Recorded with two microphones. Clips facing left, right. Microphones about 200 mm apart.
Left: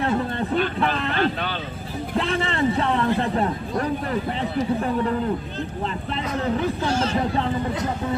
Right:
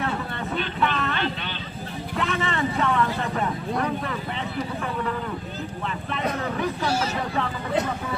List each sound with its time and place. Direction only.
0.7 s a sound: 35° left (ahead or behind)
2.1 s speech: 30° left (ahead or behind)
6.9 s speech: 10° right (ahead or behind)